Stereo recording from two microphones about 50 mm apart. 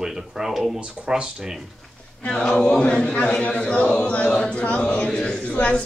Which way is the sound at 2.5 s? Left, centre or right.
Centre.